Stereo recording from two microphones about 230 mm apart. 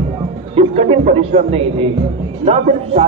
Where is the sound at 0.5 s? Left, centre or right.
Right.